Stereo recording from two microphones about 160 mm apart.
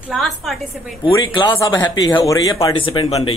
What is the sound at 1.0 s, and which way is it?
Speech, 30° left (ahead or behind).